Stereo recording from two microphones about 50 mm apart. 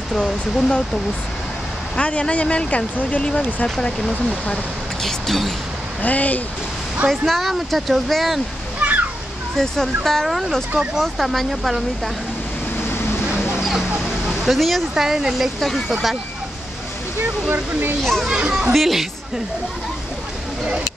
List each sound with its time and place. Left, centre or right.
0.1 s speech: centre
2.0 s speech: left
3.2 s speech: centre
5.0 s speech: centre
6.0 s speech: left
7.1 s speech: centre
8.8 s a sound: right
9.6 s speech: centre
13.6 s a sound: centre
13.9 s speech: centre
17.2 s speech: right
18.2 s a child's voice: centre
18.7 s speech: centre